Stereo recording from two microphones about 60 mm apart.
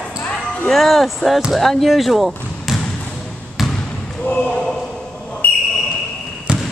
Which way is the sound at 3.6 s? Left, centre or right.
Centre.